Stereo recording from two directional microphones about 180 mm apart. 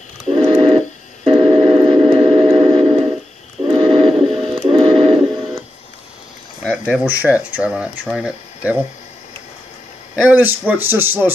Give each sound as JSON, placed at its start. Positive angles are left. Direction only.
{"t": 0.3, "sound": "a sound", "side_deg": -30}
{"t": 4.6, "sound": "music", "side_deg": -30}
{"t": 6.6, "sound": "speech", "side_deg": -10}
{"t": 10.1, "sound": "speech", "side_deg": -10}